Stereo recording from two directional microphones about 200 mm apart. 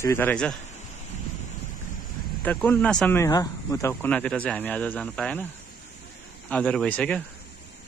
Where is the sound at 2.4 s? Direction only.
10° left (ahead or behind).